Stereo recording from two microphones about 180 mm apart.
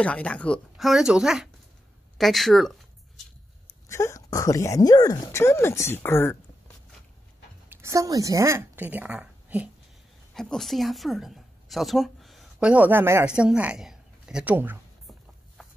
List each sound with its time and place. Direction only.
0.0 s speech: 5° left (ahead or behind)
2.1 s a sound: centre (ahead or behind)
3.9 s speech: 15° left (ahead or behind)
7.7 s a woman's voice: 15° right (ahead or behind)
10.3 s a woman's voice: 5° left (ahead or behind)
15.6 s walk: centre (ahead or behind)